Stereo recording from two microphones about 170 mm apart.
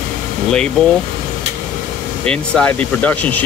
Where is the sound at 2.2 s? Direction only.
5° left (ahead or behind).